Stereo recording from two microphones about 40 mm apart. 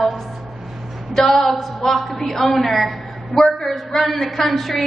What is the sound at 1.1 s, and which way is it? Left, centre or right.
A man's voice, centre.